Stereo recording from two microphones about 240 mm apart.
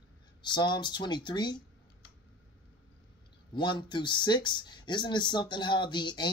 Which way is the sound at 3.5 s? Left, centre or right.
Centre.